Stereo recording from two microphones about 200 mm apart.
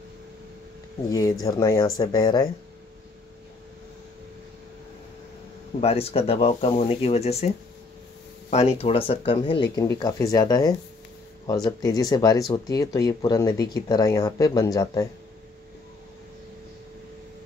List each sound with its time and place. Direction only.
1.4 s speech: 20° left (ahead or behind)
5.8 s speech: 30° left (ahead or behind)